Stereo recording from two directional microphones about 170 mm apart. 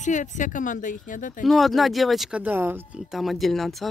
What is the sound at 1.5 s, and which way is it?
Speech, centre (ahead or behind).